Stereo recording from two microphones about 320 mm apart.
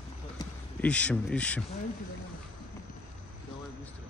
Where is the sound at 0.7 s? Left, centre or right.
Centre.